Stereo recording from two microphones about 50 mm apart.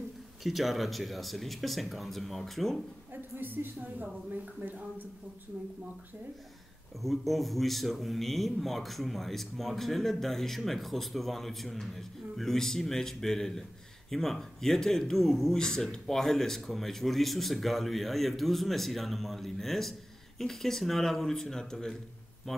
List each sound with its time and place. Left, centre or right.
0.4 s speech: centre
3.1 s a sound: right
4.0 s speech: right
7.0 s speech: centre